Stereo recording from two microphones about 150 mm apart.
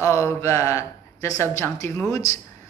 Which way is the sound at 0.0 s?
20° left (ahead or behind).